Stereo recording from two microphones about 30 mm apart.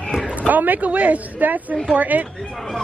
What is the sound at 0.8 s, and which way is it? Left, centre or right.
Speech, right.